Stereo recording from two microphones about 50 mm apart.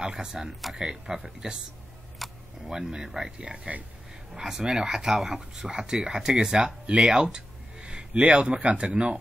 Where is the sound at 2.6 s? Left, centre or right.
Centre.